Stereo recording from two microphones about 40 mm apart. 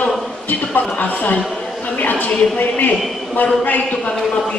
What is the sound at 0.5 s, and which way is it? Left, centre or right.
Speech, left.